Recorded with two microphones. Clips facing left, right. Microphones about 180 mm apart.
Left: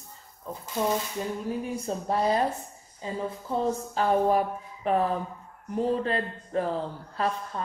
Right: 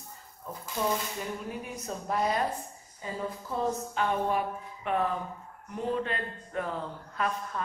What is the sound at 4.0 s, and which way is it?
Speech, 35° left (ahead or behind).